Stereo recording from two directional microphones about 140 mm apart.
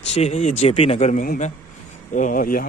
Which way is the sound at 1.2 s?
85° left.